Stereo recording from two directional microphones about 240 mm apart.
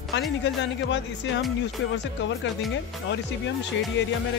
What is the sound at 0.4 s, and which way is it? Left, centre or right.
Speech, left.